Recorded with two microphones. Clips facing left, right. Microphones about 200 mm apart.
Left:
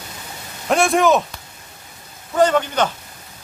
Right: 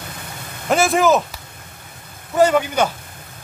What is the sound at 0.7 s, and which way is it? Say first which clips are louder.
Speech: even; centre (ahead or behind).